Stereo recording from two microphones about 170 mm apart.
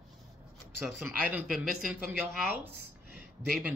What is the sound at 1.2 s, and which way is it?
A man's voice, 5° right (ahead or behind).